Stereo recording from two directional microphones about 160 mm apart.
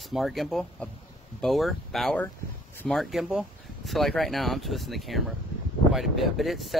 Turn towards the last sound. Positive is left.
turn(degrees=0)  # may be behind; listen again after turning